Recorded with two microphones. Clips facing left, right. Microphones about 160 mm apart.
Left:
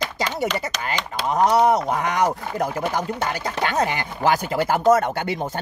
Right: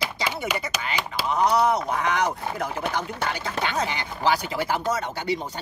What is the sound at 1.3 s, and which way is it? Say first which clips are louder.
Speech: left 4 dB; 45° left (ahead or behind).